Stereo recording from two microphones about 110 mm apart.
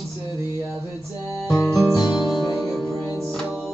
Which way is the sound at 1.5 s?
30° left (ahead or behind).